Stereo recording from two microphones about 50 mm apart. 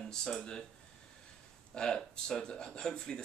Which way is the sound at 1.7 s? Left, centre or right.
Centre.